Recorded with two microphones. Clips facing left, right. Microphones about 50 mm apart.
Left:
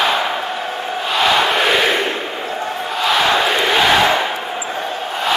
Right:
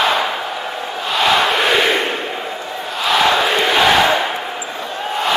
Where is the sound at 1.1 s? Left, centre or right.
Centre.